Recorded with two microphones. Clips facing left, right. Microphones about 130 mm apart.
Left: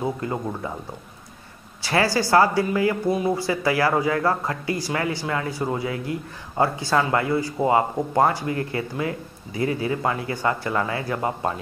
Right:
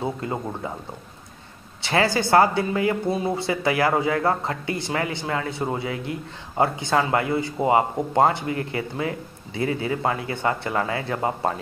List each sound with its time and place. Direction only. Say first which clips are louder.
0.0 s speech: left 1 dB; 25° right (ahead or behind)
1.8 s speech: even; 25° right (ahead or behind)
8.5 s speech: left 1 dB; 30° left (ahead or behind)
8.9 s speech: even; 25° right (ahead or behind)